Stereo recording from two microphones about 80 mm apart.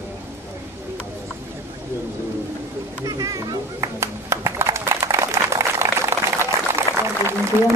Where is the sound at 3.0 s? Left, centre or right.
Right.